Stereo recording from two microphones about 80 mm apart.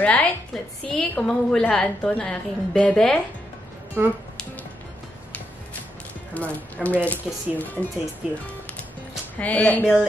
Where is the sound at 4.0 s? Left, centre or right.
Right.